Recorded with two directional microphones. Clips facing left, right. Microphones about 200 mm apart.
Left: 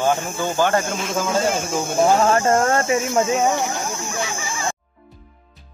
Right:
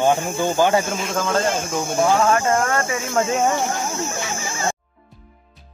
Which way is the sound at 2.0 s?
25° left (ahead or behind).